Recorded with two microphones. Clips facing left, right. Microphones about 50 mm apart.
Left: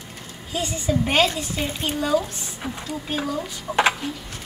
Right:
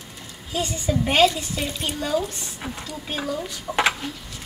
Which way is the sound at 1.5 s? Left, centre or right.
Left.